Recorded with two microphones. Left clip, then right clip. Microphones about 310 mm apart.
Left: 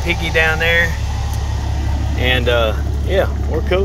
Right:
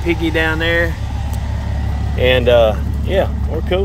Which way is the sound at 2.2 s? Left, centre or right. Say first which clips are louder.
Right 5 dB; centre.